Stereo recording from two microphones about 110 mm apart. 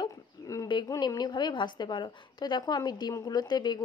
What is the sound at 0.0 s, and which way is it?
Dog, 30° left (ahead or behind).